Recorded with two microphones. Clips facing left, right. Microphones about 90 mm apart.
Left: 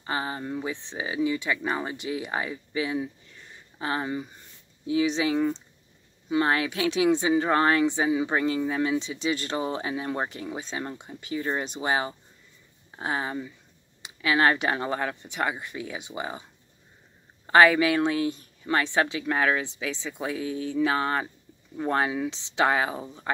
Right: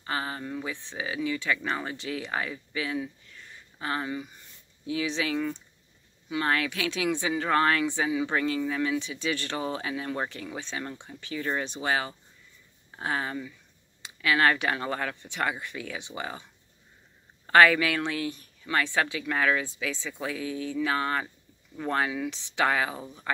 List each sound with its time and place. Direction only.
0.0 s speech: 25° left (ahead or behind)
17.5 s speech: 20° left (ahead or behind)